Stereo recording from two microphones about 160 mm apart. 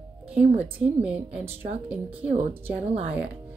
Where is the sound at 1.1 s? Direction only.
40° right (ahead or behind).